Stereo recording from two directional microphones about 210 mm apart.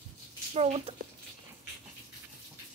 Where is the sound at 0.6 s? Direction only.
30° right (ahead or behind).